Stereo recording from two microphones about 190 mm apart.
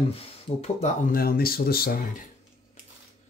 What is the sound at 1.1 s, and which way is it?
Speech, 50° left (ahead or behind).